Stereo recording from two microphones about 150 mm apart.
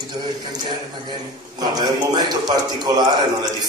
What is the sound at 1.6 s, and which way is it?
A man's voice, 25° right (ahead or behind).